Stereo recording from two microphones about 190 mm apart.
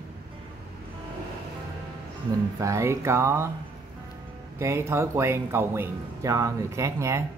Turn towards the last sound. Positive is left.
turn(degrees=-15)  # may be behind; listen again after turning